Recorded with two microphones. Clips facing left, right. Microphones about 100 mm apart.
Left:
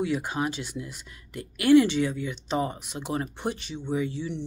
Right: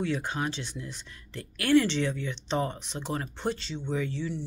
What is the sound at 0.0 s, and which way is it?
Speech, 10° left (ahead or behind).